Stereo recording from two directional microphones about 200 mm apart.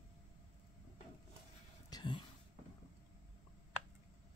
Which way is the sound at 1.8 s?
20° left (ahead or behind).